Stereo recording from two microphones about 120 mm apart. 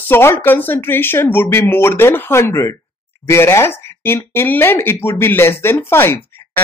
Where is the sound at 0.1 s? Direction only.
20° left (ahead or behind).